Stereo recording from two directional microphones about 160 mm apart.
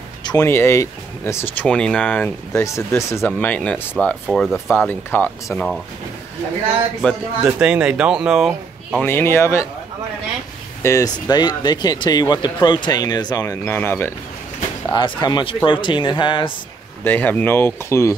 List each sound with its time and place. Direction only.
0.2 s a sound: 25° left (ahead or behind)
0.5 s speech: 15° left (ahead or behind)
4.6 s speech: 10° left (ahead or behind)
7.4 s speech: 5° right (ahead or behind)
9.0 s speech: 15° left (ahead or behind)
10.8 s speech: 20° left (ahead or behind)
14.9 s speech: 30° left (ahead or behind)
17.0 s speech: 10° left (ahead or behind)